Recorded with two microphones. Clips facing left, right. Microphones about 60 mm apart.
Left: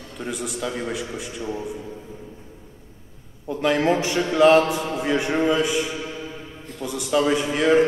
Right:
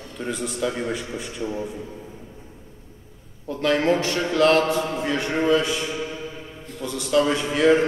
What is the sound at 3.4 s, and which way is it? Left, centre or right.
A man's voice, centre.